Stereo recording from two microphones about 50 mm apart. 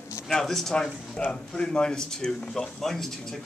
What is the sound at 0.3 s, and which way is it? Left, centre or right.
Speech, centre.